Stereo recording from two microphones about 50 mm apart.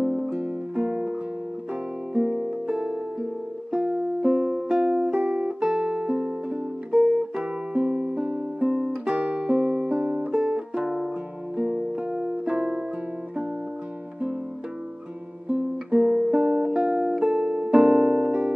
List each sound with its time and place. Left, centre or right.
0.0 s music: right
2.1 s music: centre
4.3 s music: right
15.9 s guitar: centre
16.2 s music: right